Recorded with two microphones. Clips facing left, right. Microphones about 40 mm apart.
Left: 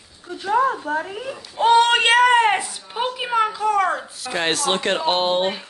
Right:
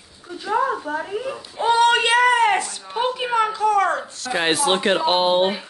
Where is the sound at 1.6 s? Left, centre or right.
Left.